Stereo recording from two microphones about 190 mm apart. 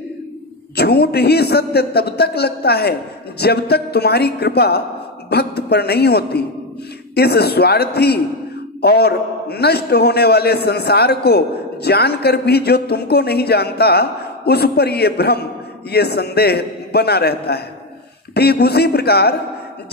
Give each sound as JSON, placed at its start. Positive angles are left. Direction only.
{"t": 0.7, "sound": "a man's voice", "side_deg": 55}